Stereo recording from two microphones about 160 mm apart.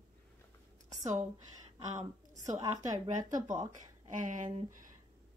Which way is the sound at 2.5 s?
20° right (ahead or behind).